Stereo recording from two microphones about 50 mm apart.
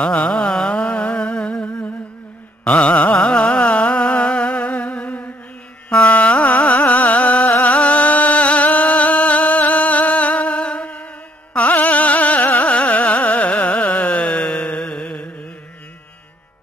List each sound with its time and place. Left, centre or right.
0.0 s music: centre
2.6 s carnatic music: left
3.3 s music: left
5.9 s carnatic music: left
7.6 s music: left
11.5 s carnatic music: left